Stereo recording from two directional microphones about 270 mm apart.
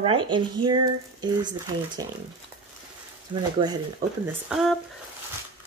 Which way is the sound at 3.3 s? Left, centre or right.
Centre.